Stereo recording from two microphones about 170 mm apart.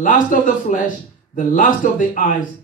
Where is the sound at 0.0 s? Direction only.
50° left (ahead or behind).